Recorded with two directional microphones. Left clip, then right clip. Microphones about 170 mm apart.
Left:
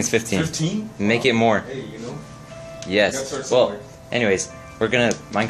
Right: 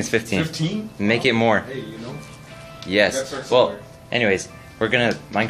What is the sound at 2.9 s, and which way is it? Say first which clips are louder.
Speech: right 1 dB; 10° right (ahead or behind).